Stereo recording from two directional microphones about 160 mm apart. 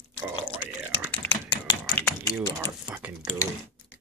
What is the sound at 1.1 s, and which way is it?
Typing, 10° left (ahead or behind).